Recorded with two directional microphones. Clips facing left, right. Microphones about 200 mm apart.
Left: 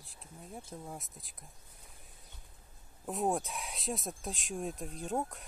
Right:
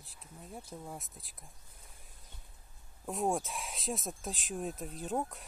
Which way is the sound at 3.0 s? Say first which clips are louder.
Even; centre (ahead or behind).